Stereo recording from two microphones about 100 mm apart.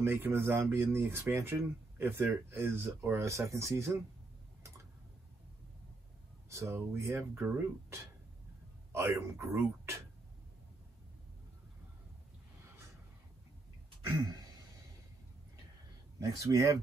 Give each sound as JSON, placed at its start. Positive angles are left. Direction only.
{"t": 0.0, "sound": "speech", "side_deg": -25}
{"t": 6.5, "sound": "speech", "side_deg": -25}
{"t": 16.2, "sound": "speech", "side_deg": -30}